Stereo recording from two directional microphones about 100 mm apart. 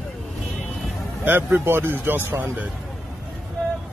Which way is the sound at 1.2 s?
20° right (ahead or behind).